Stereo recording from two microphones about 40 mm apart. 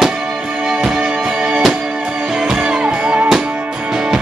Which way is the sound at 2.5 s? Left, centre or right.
Right.